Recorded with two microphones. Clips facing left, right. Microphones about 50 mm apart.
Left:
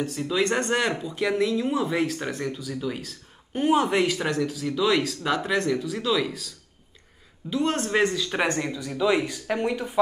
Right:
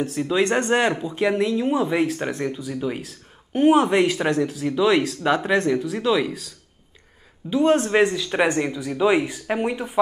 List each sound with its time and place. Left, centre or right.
0.2 s speech: right
3.8 s speech: right
7.4 s speech: right
8.0 s speech: centre